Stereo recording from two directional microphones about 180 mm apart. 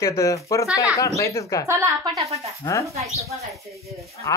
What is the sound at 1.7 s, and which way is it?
Speech, 15° right (ahead or behind).